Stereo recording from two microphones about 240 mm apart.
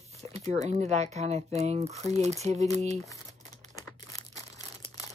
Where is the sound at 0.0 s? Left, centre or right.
Right.